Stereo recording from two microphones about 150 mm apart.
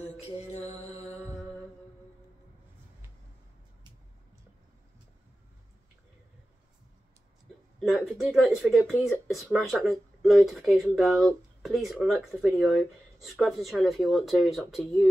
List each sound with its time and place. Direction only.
0.4 s music: 45° left (ahead or behind)
7.8 s speech: centre (ahead or behind)